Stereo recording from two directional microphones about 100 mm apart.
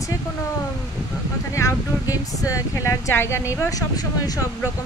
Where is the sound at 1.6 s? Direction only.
30° left (ahead or behind).